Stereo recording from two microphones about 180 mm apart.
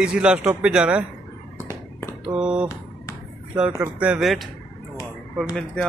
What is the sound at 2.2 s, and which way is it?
Speech, 5° right (ahead or behind).